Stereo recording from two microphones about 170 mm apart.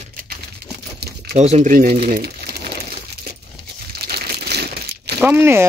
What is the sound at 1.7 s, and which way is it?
Speech, 55° right (ahead or behind).